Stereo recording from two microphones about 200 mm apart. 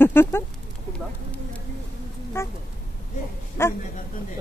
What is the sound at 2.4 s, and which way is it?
Speech, 10° left (ahead or behind).